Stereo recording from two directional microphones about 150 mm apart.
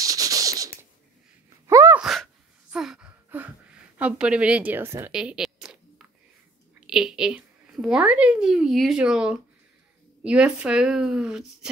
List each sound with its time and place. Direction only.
0.0 s a sound: 25° right (ahead or behind)
1.7 s sneeze: 20° right (ahead or behind)
2.0 s sneeze: centre (ahead or behind)
2.7 s a sound: 5° right (ahead or behind)
5.1 s zipper: 5° right (ahead or behind)
6.9 s a woman's voice: 5° right (ahead or behind)